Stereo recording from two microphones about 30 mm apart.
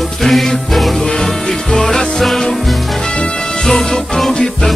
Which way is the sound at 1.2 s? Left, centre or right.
Centre.